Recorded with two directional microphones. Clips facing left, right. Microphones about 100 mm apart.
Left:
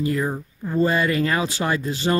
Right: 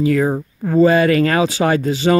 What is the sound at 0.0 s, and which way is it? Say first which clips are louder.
Speech: right 7 dB; 90° right.